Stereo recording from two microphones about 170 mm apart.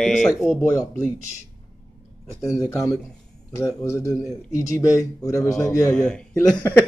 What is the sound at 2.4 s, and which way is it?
A man's voice, 20° left (ahead or behind).